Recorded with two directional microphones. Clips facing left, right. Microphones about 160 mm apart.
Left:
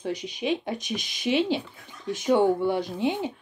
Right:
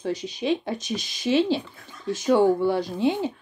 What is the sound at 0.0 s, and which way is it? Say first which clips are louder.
Speech: right 2 dB; 20° left (ahead or behind).